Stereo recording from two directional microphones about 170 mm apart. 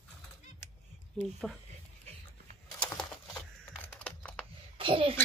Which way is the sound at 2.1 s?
35° right (ahead or behind).